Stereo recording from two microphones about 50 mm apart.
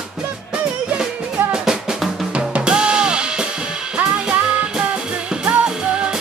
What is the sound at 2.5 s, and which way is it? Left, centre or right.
Music, centre.